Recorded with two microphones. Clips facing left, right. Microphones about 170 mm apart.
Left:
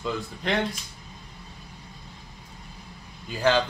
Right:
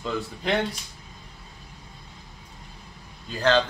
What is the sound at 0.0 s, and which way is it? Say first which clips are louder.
Speech: right 1 dB; centre (ahead or behind).